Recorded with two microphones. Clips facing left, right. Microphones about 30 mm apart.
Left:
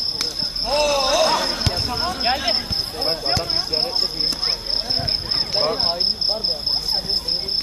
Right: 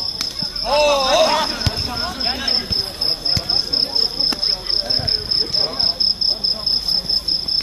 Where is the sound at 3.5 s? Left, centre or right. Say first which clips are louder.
Right 2 dB; right.